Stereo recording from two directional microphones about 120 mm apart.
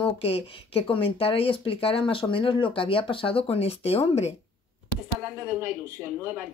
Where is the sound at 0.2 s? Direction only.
55° left (ahead or behind).